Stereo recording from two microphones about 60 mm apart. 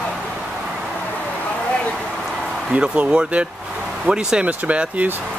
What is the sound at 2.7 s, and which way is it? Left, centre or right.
Speech, centre.